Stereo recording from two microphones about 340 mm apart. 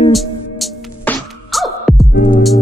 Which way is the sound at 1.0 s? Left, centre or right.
Centre.